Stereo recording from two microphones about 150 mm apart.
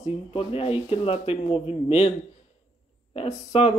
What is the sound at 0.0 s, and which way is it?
Speech, 40° left (ahead or behind).